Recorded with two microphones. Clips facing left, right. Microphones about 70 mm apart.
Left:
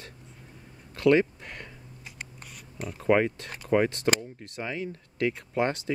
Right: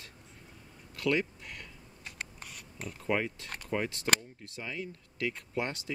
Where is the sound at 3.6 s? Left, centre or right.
Left.